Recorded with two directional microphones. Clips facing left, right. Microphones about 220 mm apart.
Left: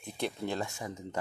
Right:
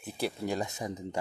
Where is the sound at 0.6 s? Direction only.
20° right (ahead or behind).